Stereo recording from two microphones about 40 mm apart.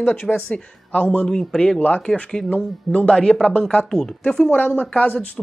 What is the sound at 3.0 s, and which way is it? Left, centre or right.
Speech, centre.